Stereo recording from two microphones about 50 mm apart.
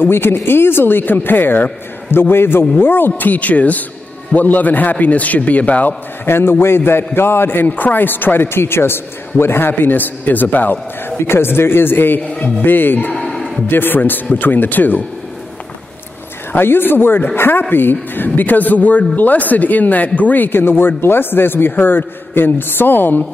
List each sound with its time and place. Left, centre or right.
0.0 s a man's voice: left
3.2 s a man's voice: left
6.2 s a man's voice: left
11.1 s a man's voice: left
16.5 s a man's voice: left